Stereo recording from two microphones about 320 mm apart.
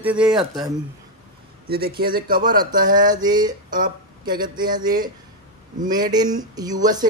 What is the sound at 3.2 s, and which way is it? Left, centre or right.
Speech, centre.